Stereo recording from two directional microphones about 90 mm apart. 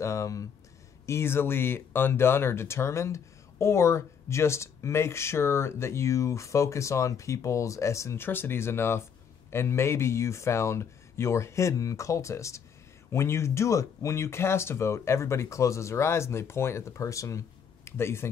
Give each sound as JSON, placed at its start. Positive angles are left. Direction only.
{"t": 0.0, "sound": "speech", "side_deg": 35}